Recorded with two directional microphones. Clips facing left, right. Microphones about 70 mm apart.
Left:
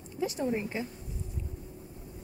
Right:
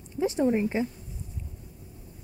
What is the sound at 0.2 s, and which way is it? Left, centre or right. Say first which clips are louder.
Speech: right 7 dB; right.